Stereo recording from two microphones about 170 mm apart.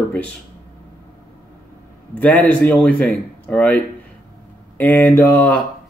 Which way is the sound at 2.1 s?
10° left (ahead or behind).